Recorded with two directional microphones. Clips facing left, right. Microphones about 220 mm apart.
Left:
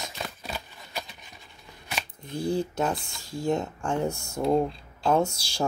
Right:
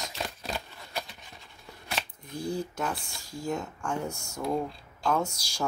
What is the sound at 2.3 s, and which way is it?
Speech, 30° left (ahead or behind).